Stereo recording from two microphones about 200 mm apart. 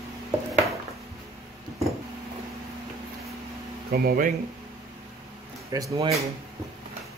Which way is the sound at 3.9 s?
45° right (ahead or behind).